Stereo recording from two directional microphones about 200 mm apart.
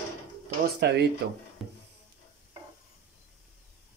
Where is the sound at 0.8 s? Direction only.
55° right (ahead or behind).